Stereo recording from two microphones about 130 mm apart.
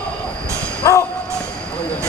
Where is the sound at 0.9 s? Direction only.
25° left (ahead or behind).